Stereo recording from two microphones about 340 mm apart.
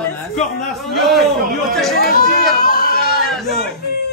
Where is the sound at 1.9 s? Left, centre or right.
Left.